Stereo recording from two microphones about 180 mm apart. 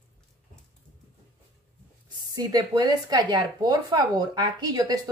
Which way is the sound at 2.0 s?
20° right (ahead or behind).